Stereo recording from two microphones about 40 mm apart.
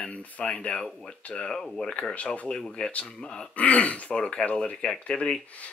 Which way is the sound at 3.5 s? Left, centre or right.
Left.